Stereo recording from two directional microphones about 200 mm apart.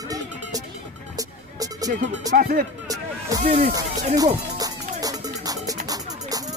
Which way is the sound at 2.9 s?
20° right (ahead or behind).